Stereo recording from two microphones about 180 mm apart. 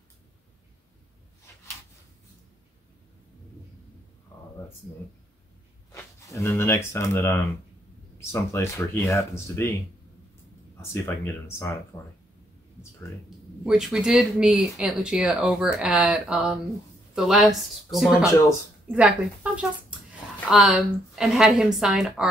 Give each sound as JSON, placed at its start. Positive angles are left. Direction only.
{"t": 5.9, "sound": "zipper", "side_deg": 15}
{"t": 8.3, "sound": "speech", "side_deg": 15}
{"t": 10.8, "sound": "speech", "side_deg": 15}
{"t": 13.7, "sound": "speech", "side_deg": -5}